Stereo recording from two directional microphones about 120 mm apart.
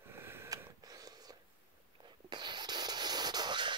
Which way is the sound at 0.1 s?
20° right (ahead or behind).